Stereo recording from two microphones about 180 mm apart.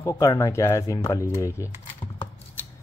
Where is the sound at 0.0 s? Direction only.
20° left (ahead or behind).